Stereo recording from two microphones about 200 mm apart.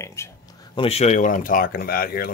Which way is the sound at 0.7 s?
30° left (ahead or behind).